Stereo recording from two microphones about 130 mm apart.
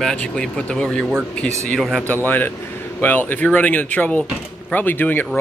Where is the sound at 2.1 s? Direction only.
15° left (ahead or behind).